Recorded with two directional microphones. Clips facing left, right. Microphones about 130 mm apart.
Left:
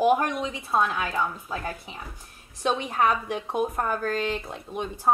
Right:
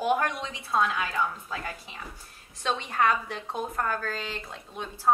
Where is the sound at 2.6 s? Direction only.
15° left (ahead or behind).